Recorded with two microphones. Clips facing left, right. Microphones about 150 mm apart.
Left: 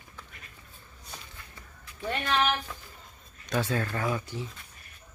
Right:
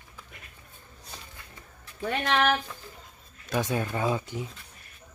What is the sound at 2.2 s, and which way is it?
Speech, 80° right.